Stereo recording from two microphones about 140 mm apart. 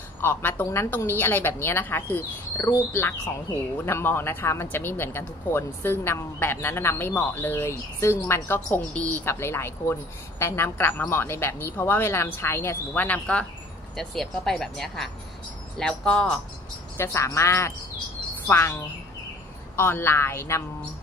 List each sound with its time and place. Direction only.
0.2 s speech: 15° left (ahead or behind)
16.9 s speech: 20° left (ahead or behind)